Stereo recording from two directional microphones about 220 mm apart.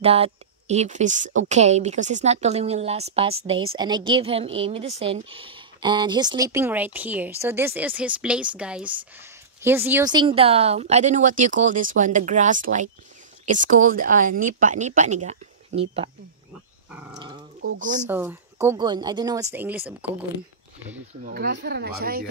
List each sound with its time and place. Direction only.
0.0 s a woman's voice: 25° right (ahead or behind)
16.9 s speech: 5° right (ahead or behind)
17.2 s speech: 20° right (ahead or behind)
17.7 s a woman's voice: 35° right (ahead or behind)
18.0 s speech: 10° right (ahead or behind)
21.2 s speech: 45° right (ahead or behind)